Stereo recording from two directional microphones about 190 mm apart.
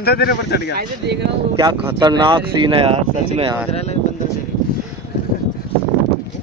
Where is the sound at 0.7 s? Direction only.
60° right (ahead or behind).